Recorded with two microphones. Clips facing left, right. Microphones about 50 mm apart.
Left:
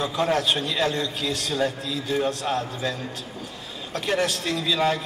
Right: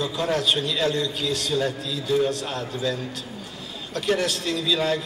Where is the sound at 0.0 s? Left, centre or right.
Left.